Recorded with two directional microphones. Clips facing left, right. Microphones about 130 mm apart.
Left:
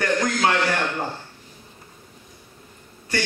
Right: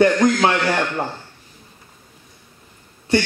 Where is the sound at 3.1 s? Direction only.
25° right (ahead or behind).